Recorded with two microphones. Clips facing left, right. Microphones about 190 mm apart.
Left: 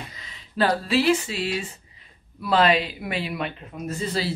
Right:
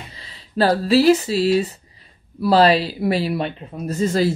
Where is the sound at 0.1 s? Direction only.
35° right (ahead or behind).